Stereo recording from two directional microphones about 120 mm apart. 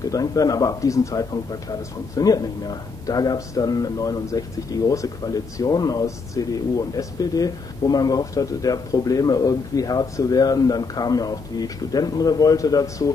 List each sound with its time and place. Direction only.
0.1 s speech: 30° left (ahead or behind)